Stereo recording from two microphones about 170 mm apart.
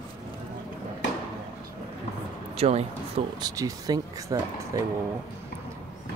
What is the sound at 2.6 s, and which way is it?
Speech, 40° right (ahead or behind).